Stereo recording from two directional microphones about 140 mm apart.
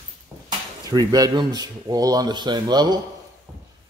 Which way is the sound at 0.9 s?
30° right (ahead or behind).